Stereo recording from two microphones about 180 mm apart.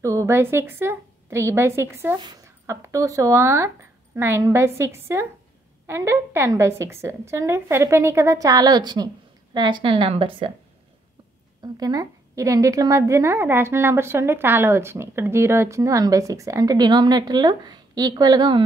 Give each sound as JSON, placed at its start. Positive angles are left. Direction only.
{"t": 0.0, "sound": "a woman's voice", "side_deg": -15}
{"t": 11.6, "sound": "a woman's voice", "side_deg": -20}